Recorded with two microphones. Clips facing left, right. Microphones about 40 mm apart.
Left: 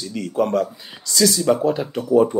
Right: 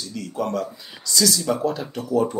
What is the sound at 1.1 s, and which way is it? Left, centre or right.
Speech, centre.